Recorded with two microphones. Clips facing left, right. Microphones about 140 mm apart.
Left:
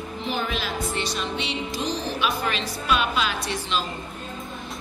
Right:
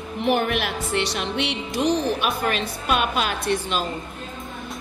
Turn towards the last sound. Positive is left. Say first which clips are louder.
# right 4 dB
turn(degrees=-50)  # may be behind; listen again after turning